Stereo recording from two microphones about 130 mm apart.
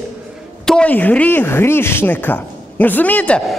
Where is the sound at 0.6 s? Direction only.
10° left (ahead or behind).